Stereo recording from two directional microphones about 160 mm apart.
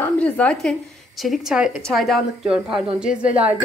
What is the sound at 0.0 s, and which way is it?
A woman's voice, 10° left (ahead or behind).